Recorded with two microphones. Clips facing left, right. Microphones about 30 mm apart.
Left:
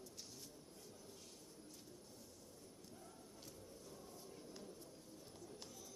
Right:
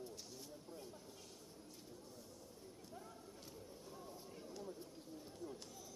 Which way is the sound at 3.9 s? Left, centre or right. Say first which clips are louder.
Right 4 dB; centre.